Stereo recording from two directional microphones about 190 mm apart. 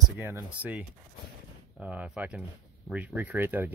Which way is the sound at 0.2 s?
10° right (ahead or behind).